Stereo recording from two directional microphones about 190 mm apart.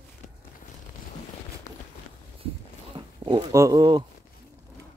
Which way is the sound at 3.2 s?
20° right (ahead or behind).